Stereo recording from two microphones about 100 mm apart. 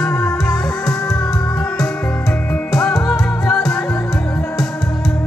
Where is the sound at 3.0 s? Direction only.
5° left (ahead or behind).